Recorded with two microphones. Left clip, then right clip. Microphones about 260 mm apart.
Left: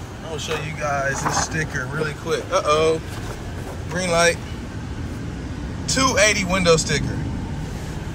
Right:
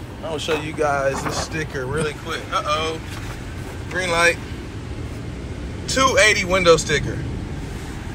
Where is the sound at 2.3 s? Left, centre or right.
Left.